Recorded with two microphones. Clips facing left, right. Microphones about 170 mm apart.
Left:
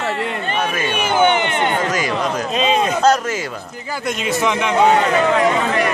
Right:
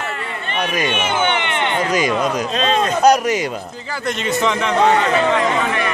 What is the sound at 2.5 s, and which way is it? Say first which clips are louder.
Speech: left 4 dB; 10° left (ahead or behind).